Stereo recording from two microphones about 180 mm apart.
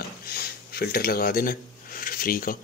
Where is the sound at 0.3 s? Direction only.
60° left (ahead or behind).